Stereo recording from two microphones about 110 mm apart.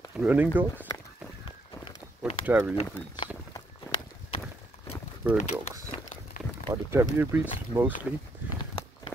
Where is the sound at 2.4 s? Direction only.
15° right (ahead or behind).